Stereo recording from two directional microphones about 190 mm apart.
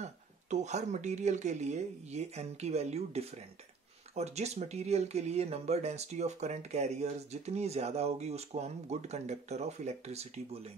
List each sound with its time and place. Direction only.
0.0 s speech: 35° right (ahead or behind)